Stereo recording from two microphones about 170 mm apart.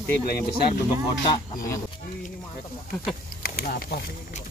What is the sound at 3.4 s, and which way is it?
Speech, 65° left (ahead or behind).